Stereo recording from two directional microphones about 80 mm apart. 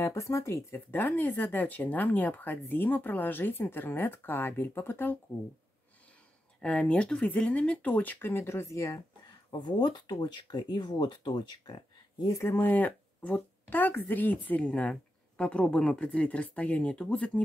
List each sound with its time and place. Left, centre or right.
0.0 s speech: left
0.7 s speech: left
6.6 s speech: centre; by 9.0 s left
9.5 s speech: left
12.4 s speech: left